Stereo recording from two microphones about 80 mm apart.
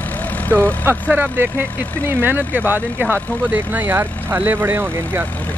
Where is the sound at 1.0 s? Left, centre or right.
Centre.